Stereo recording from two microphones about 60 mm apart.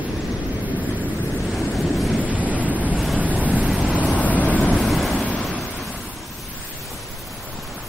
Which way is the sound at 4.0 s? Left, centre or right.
Left.